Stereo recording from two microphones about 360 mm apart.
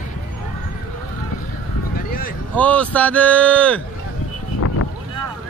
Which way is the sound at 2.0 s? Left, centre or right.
Left.